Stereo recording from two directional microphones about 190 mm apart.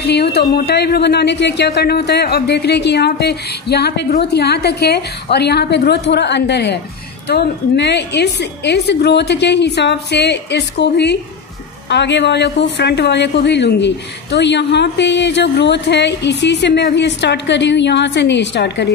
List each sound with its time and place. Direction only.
0.0 s a woman's voice: 60° left (ahead or behind)